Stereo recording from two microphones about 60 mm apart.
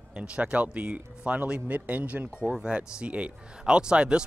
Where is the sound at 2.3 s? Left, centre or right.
Centre.